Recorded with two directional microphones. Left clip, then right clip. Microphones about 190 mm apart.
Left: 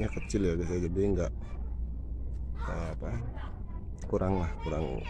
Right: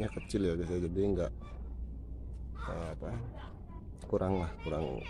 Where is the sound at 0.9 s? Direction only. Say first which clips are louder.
Left 2 dB; 5° right (ahead or behind).